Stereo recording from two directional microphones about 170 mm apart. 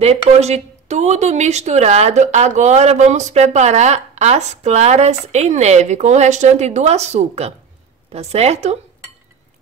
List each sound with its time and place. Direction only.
0.0 s a woman's voice: 40° right (ahead or behind)